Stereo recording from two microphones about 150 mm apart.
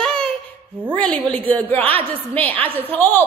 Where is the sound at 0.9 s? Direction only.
5° left (ahead or behind).